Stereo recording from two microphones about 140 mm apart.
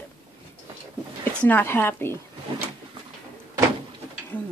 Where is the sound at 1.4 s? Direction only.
15° left (ahead or behind).